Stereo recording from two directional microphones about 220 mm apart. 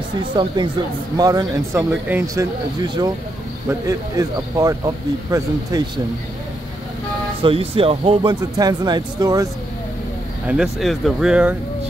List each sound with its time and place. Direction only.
0.2 s speech: 20° right (ahead or behind)
7.4 s speech: 25° right (ahead or behind)
10.4 s speech: 5° right (ahead or behind)